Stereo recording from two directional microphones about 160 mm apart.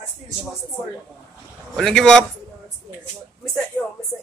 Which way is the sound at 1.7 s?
5° left (ahead or behind).